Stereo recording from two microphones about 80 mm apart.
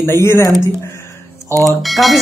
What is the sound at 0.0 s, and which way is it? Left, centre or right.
Speech, left.